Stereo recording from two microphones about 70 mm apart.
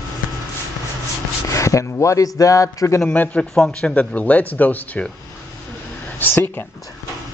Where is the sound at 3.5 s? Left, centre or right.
Centre; by 5.0 s left.